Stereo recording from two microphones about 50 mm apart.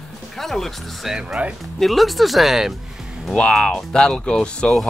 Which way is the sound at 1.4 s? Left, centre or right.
Right.